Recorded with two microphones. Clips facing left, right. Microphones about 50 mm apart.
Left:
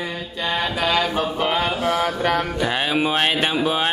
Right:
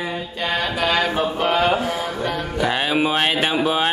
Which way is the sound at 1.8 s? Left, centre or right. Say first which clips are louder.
Left 4 dB; left.